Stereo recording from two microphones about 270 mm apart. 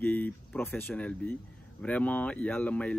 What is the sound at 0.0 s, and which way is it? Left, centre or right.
Speech, centre.